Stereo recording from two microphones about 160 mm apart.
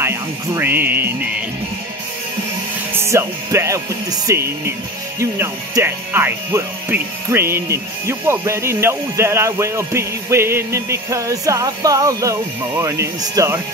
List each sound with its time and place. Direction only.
0.0 s speech: 15° right (ahead or behind)
2.9 s music: 15° right (ahead or behind)
5.2 s speech: 15° right (ahead or behind)